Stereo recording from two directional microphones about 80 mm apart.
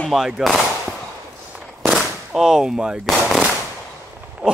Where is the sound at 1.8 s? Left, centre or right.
Centre.